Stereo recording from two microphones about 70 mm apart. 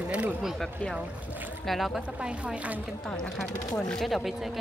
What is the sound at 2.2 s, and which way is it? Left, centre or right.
Speech, centre.